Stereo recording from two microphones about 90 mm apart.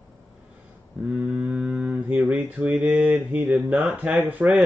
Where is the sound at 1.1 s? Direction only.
15° right (ahead or behind).